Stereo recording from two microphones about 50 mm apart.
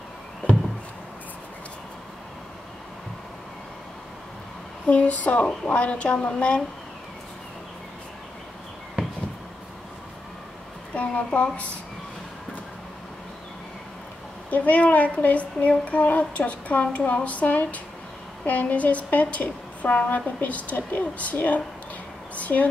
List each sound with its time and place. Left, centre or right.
4.8 s speech: left
11.0 s a woman's voice: left
14.5 s a woman's voice: left